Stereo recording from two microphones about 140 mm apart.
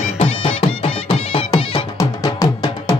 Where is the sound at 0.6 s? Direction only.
35° left (ahead or behind).